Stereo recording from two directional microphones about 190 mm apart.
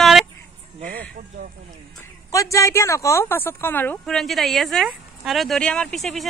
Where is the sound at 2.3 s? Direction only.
15° left (ahead or behind).